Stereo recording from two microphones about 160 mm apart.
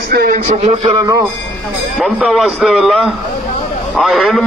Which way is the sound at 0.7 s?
40° right (ahead or behind).